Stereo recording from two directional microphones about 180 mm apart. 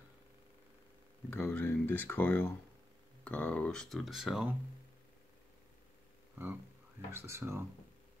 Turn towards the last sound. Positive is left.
turn(degrees=-15)  # may be behind; listen again after turning